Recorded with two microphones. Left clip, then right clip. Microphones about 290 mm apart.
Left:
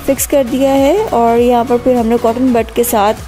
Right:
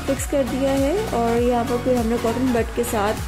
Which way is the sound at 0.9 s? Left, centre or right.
Left.